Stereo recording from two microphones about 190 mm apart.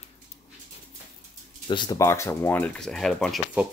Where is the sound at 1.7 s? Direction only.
25° left (ahead or behind).